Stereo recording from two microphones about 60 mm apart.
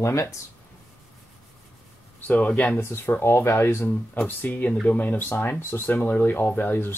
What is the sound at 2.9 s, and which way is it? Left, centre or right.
Speech, left.